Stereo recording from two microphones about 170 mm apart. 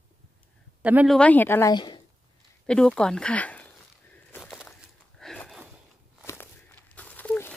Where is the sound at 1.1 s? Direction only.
10° left (ahead or behind).